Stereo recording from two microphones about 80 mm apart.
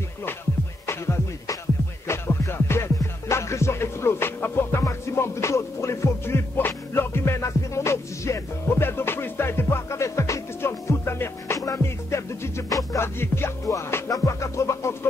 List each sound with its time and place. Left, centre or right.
0.8 s music: left
13.0 s music: left